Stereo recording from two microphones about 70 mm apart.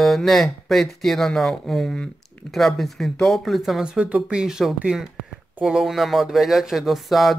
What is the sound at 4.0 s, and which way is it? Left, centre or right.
Speech, centre.